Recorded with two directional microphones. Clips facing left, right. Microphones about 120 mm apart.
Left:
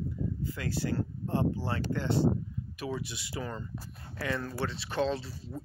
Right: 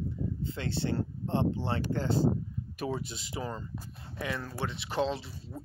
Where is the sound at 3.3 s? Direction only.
20° right (ahead or behind).